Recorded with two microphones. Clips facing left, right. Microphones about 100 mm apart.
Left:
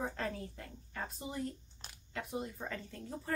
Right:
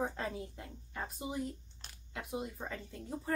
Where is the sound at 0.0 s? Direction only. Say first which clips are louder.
Right 1 dB; 15° right (ahead or behind).